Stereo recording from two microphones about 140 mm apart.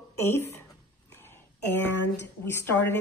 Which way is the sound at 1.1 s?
15° left (ahead or behind).